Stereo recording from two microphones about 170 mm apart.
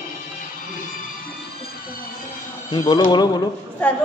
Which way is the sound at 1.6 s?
60° left (ahead or behind).